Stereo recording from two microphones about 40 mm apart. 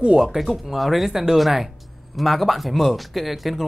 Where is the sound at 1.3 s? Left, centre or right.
Centre.